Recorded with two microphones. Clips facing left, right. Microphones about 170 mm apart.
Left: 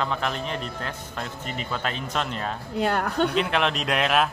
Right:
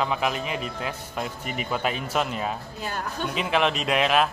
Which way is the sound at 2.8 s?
65° left (ahead or behind).